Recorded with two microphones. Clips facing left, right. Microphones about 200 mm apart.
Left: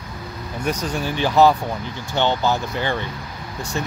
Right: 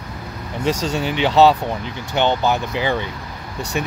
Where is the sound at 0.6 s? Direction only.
90° right.